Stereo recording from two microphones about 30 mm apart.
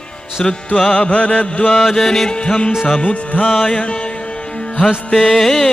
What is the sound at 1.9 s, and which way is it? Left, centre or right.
Music, centre.